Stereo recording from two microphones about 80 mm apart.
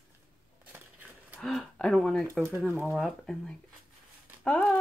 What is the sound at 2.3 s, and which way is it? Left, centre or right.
Speech, right.